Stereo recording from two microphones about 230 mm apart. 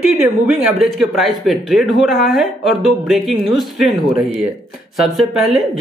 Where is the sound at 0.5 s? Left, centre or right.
Centre.